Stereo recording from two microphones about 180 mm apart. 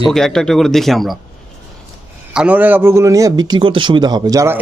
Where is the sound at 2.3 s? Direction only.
10° right (ahead or behind).